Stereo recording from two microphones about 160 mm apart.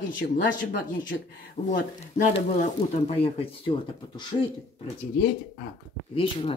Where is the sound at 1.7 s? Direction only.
55° left (ahead or behind).